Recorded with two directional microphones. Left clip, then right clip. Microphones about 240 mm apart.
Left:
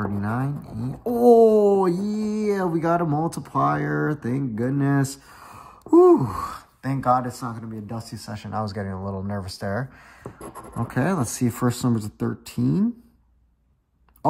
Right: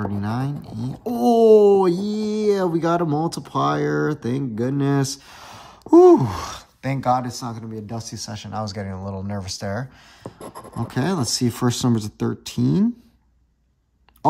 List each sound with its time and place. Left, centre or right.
0.0 s speech: right
1.0 s speech: centre
1.5 s a sound: right
2.0 s speech: centre
5.4 s a sound: right
7.3 s speech: right